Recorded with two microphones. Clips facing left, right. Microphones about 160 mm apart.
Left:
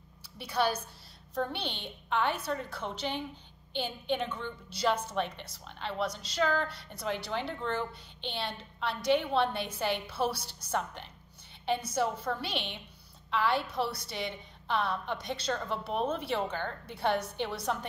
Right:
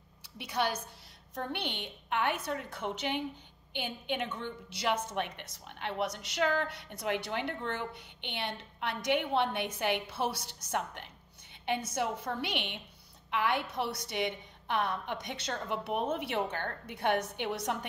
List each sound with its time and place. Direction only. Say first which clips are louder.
0.4 s a woman's voice: left 3 dB; 20° right (ahead or behind)
11.9 s a woman's voice: left 3 dB; 20° right (ahead or behind)